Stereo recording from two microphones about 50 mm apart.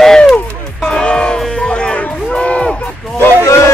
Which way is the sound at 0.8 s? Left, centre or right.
Centre.